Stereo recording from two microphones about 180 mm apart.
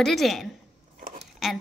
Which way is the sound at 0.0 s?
Centre (ahead or behind).